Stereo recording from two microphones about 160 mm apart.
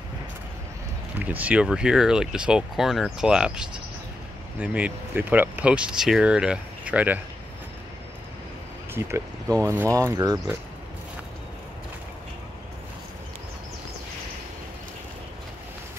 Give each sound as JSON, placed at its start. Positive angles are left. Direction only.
{"t": 1.2, "sound": "speech", "side_deg": -10}
{"t": 8.9, "sound": "speech", "side_deg": -20}